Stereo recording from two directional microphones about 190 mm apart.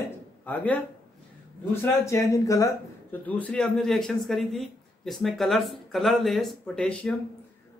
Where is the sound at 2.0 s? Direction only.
15° left (ahead or behind).